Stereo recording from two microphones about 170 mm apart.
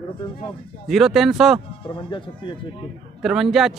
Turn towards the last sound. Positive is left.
turn(degrees=0)  # may be behind; listen again after turning